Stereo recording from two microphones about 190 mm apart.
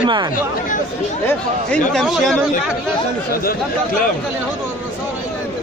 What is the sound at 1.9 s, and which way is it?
Speech, centre (ahead or behind).